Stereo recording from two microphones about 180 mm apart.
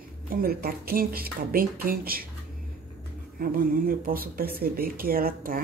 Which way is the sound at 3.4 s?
50° right (ahead or behind).